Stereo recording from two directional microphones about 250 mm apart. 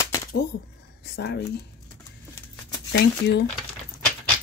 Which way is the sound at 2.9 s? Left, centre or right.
Left.